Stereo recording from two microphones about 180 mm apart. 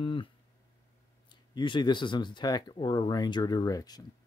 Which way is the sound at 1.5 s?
25° left (ahead or behind).